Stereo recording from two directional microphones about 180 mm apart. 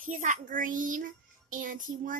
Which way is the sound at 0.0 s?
45° right (ahead or behind).